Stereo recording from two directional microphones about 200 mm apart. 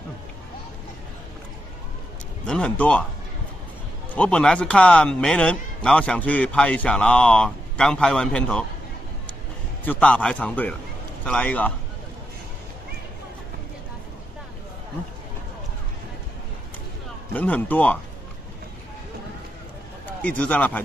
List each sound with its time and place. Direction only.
2.4 s a man's voice: 5° left (ahead or behind)
4.1 s a man's voice: 5° left (ahead or behind)
9.8 s a man's voice: 5° left (ahead or behind)
17.3 s a man's voice: 10° left (ahead or behind)
20.1 s speech: 5° left (ahead or behind)